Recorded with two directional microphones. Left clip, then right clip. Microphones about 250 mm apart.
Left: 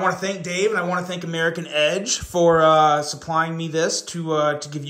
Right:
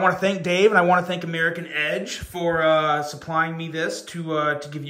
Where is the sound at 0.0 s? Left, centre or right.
Centre.